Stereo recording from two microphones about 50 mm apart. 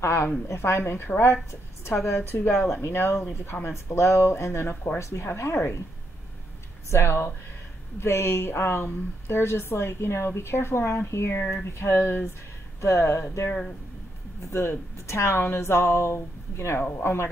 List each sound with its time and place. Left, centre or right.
0.0 s a woman's voice: left
6.9 s speech: left
8.5 s speech: left
11.5 s speech: left
12.8 s speech: left
14.5 s speech: left